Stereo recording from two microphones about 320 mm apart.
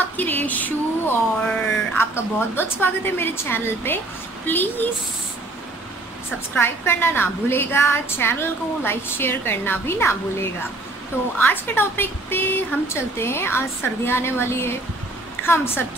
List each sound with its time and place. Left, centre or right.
0.0 s a sound: centre
2.0 s a woman's voice: centre
6.5 s a woman's voice: centre